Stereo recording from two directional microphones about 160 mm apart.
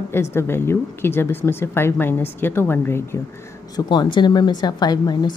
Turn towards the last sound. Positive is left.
turn(degrees=25)  # may be behind; listen again after turning